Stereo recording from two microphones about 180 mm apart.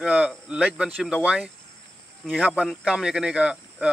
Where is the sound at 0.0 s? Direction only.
5° right (ahead or behind).